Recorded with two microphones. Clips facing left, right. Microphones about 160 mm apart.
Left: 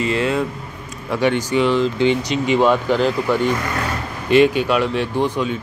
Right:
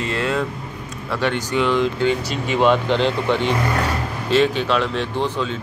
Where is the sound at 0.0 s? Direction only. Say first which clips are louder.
Left 3 dB; 5° left (ahead or behind).